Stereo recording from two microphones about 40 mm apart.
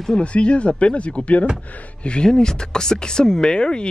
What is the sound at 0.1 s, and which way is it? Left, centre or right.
Speech, left.